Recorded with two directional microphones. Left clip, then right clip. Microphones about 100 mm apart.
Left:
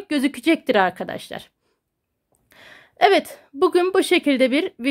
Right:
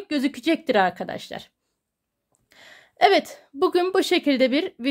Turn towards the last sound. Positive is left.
turn(degrees=25)  # may be behind; listen again after turning